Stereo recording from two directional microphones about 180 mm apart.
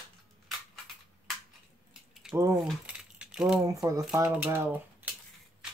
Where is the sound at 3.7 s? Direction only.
20° right (ahead or behind).